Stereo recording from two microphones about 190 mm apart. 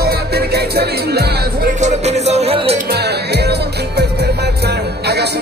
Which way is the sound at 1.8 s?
35° right (ahead or behind).